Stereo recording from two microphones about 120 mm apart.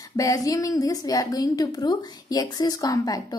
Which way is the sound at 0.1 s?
30° left (ahead or behind).